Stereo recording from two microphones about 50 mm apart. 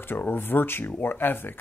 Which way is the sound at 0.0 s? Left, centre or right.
Left.